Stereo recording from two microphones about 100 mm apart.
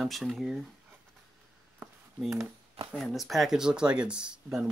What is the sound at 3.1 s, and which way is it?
Speech, centre (ahead or behind).